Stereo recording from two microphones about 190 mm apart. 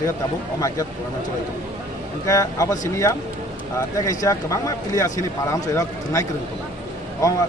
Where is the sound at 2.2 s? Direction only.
15° left (ahead or behind).